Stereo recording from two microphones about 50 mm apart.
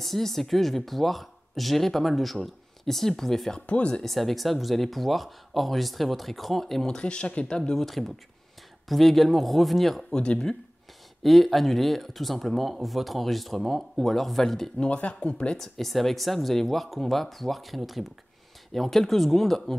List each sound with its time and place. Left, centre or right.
0.0 s speech: centre
3.5 s speech: left
4.0 s speech: centre
7.0 s speech: left; by 10.0 s centre
10.1 s speech: centre
11.2 s speech: centre
14.8 s speech: left
15.5 s speech: centre